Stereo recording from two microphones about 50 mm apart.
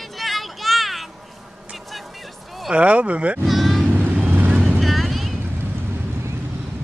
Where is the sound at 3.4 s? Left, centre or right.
Centre.